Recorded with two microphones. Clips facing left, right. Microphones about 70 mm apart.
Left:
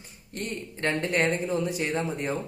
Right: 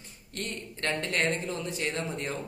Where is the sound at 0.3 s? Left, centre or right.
Centre.